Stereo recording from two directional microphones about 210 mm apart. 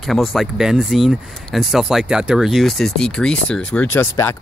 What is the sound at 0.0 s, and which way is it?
Speech, centre (ahead or behind).